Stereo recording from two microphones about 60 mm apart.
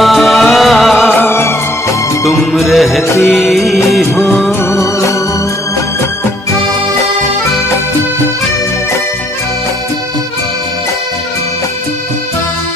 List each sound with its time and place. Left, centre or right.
0.0 s music: centre
1.1 s music: left
2.2 s music: centre
4.6 s music: left